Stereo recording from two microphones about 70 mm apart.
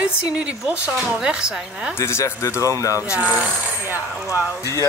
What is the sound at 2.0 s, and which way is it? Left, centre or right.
A woman's voice, left.